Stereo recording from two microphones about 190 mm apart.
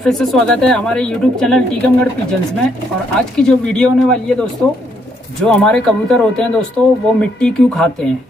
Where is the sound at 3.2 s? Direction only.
5° left (ahead or behind).